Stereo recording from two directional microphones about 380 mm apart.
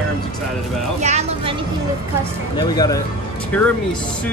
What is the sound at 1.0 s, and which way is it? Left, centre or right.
Speech, centre.